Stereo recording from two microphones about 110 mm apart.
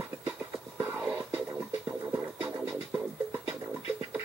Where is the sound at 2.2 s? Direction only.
10° right (ahead or behind).